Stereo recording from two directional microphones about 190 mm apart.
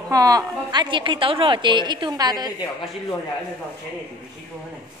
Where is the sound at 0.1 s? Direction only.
20° right (ahead or behind).